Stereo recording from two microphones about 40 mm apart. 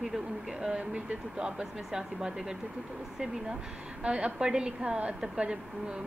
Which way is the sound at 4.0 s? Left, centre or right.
Right.